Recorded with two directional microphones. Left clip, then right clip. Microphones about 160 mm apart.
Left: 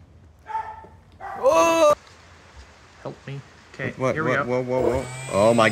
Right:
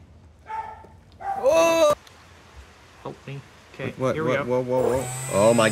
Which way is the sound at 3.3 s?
30° left (ahead or behind).